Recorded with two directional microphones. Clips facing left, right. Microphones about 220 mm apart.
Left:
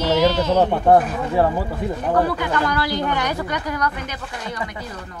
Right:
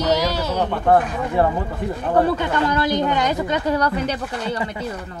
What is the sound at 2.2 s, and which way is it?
Speech, 25° right (ahead or behind).